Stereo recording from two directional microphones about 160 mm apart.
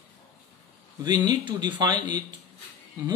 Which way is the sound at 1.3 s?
25° right (ahead or behind).